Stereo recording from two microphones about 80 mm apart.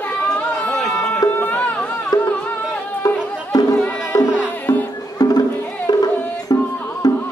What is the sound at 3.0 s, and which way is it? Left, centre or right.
Music, left.